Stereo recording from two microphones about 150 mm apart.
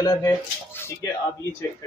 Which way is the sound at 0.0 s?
20° left (ahead or behind).